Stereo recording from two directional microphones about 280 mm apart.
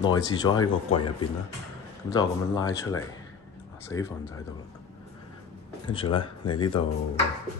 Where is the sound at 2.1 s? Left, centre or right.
Centre.